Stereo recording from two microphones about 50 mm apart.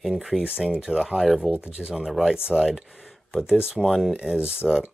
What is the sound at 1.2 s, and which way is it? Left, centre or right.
Speech, centre.